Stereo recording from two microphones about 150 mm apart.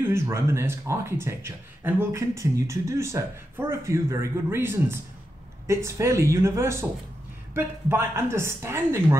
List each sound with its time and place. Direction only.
0.1 s speech: 15° right (ahead or behind)